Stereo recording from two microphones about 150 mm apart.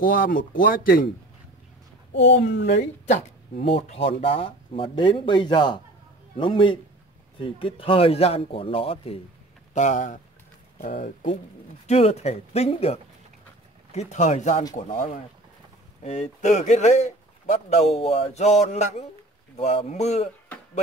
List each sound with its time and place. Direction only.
0.0 s speech: 70° left (ahead or behind)
3.1 s speech: 45° left (ahead or behind)
9.8 s speech: 55° left (ahead or behind)
11.9 s speech: 45° left (ahead or behind)